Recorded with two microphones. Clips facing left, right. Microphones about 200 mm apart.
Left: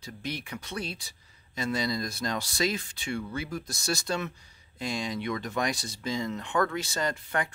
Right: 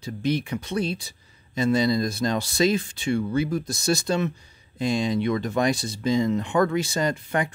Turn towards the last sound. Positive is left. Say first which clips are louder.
# right 6 dB
turn(degrees=-15)  # may be behind; listen again after turning